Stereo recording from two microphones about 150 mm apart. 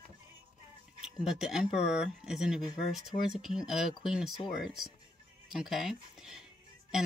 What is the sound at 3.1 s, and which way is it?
Speech, 30° left (ahead or behind).